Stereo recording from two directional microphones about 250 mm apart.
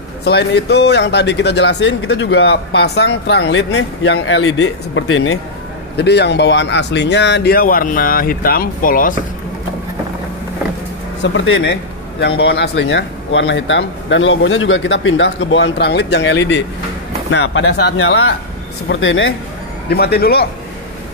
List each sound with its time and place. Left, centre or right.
0.2 s speech: left
5.9 s speech: left
11.3 s speech: left
19.9 s speech: left